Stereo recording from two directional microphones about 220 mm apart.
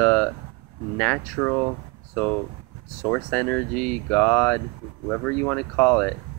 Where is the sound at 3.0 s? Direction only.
10° left (ahead or behind).